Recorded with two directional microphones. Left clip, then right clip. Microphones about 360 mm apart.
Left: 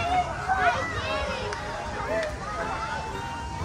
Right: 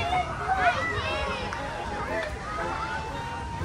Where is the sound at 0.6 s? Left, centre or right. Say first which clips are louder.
Right 1 dB; left.